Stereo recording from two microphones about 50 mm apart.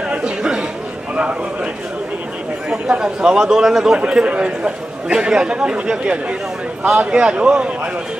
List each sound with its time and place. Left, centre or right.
0.1 s chatter: centre
2.9 s a man's voice: centre